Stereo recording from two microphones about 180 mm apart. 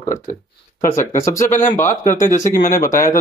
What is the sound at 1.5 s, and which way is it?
Speech, 45° left (ahead or behind).